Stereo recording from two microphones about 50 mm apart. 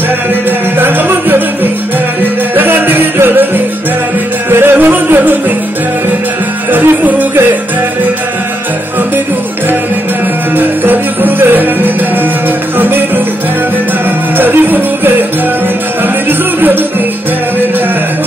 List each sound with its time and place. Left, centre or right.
0.7 s music: right
4.7 s music: right
6.7 s music: right
10.6 s music: right
14.3 s music: right